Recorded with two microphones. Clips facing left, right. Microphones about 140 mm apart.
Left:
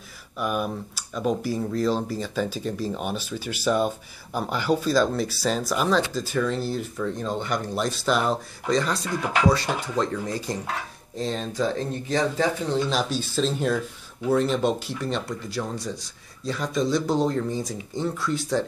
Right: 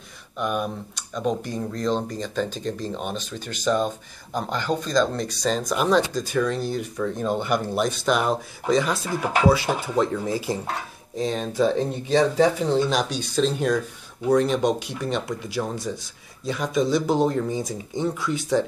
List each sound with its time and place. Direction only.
0.4 s speech: 5° left (ahead or behind)
7.2 s speech: 10° right (ahead or behind)
12.8 s speech: 5° left (ahead or behind)